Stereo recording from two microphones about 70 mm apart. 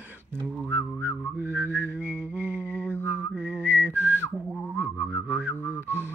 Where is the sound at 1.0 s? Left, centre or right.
Right.